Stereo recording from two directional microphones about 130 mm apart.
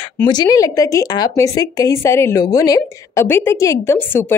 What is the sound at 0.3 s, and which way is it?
A woman's voice, 30° left (ahead or behind).